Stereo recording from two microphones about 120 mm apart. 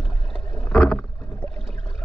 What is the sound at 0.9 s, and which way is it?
Rowboat, 10° left (ahead or behind).